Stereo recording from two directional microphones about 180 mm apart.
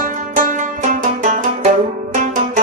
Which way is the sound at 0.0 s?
45° right (ahead or behind).